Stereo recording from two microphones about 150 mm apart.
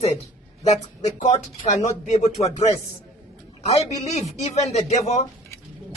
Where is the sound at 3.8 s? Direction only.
50° left (ahead or behind).